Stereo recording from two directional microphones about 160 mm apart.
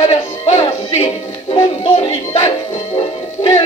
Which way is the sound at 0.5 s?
40° left (ahead or behind).